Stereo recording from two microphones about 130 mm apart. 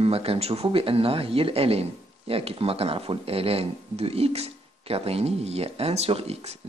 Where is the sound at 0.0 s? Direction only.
50° right (ahead or behind).